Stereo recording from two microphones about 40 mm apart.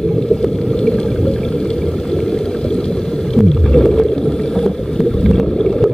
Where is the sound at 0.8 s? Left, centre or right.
Left.